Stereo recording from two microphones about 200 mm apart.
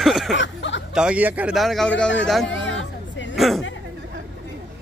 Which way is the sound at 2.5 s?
70° left (ahead or behind).